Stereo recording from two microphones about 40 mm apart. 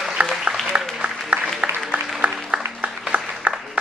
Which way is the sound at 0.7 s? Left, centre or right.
Right.